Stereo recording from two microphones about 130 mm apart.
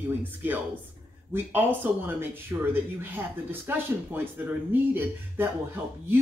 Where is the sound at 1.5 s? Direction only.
15° right (ahead or behind).